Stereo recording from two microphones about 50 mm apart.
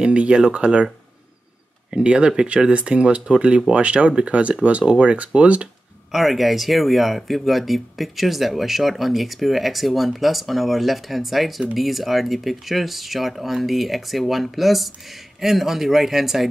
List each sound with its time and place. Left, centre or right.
0.0 s speech: right
1.9 s speech: centre
6.1 s speech: centre